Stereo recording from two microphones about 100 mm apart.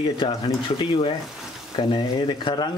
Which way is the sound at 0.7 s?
55° left (ahead or behind).